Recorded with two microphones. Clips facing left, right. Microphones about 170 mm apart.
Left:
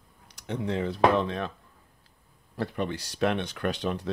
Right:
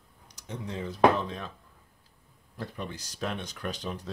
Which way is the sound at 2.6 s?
70° left (ahead or behind).